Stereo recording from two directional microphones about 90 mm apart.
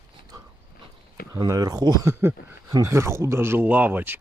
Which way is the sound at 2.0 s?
25° right (ahead or behind).